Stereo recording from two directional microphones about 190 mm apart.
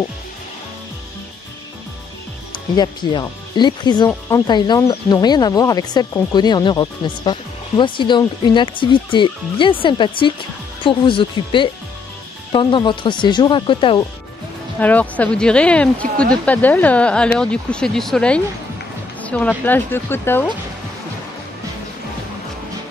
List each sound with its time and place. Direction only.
2.7 s speech: 25° left (ahead or behind)
14.8 s speech: 10° left (ahead or behind)